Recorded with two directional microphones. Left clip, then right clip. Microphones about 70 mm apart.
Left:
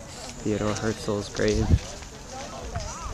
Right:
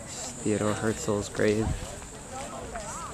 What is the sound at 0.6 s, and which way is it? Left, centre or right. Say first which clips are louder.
Speech: left 1 dB; left.